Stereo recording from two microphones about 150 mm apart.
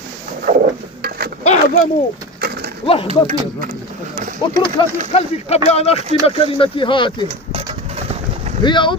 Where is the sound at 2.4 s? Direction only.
90° right.